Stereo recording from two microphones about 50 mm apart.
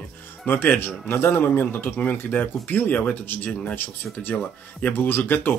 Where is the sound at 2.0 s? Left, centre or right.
Left.